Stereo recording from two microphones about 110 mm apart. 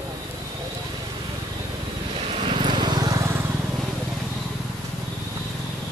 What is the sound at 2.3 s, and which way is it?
Vehicle, 55° right (ahead or behind).